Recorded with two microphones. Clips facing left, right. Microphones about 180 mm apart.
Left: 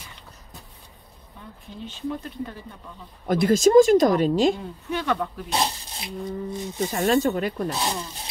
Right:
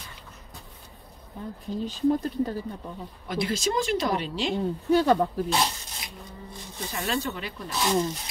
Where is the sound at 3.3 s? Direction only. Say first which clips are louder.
Left 9 dB; 50° left (ahead or behind).